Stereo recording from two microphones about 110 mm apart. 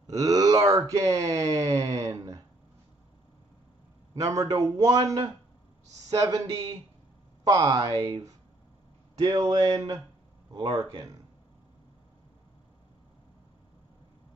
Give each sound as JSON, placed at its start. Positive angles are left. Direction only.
{"t": 0.0, "sound": "speech", "side_deg": -30}
{"t": 4.1, "sound": "a man's voice", "side_deg": -30}
{"t": 7.4, "sound": "a man's voice", "side_deg": -30}
{"t": 9.2, "sound": "a man's voice", "side_deg": -45}